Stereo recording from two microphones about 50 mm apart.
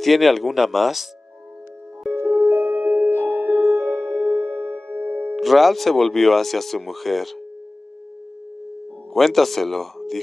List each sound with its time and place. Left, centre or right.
0.0 s speech: centre
2.2 s music: right
5.3 s speech: centre
9.1 s speech: centre